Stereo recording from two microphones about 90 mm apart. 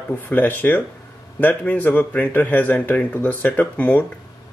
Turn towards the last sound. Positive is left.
turn(degrees=15)  # may be behind; listen again after turning